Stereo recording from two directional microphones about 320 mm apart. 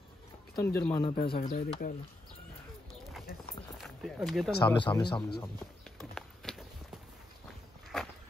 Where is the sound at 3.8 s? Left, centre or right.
Centre.